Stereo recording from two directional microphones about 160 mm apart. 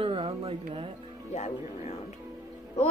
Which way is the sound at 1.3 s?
45° left (ahead or behind).